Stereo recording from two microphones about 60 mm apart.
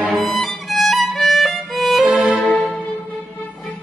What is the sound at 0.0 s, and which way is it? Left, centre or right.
Violin, left.